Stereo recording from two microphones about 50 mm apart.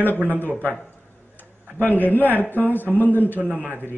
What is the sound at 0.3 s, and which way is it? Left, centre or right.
Speech, left.